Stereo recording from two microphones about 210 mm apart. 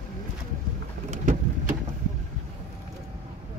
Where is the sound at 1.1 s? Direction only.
35° right (ahead or behind).